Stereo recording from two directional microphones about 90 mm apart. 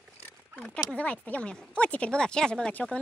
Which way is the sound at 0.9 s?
15° left (ahead or behind).